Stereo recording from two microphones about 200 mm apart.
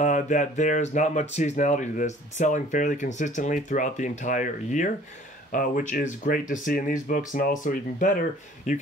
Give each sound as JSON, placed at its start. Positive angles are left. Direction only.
{"t": 0.0, "sound": "speech", "side_deg": 40}